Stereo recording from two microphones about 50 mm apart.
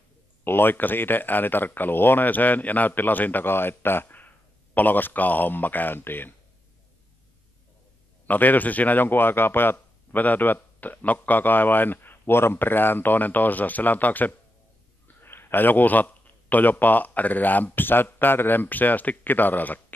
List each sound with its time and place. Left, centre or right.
0.4 s speech: left
8.3 s speech: left
15.2 s speech: left